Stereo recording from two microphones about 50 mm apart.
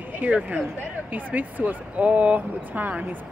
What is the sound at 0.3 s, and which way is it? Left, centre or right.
Speech, right.